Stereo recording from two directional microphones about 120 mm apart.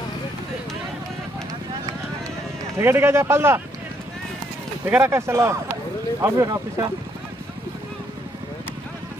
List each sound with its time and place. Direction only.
2.8 s a man's voice: 20° right (ahead or behind)
4.8 s a man's voice: 15° right (ahead or behind)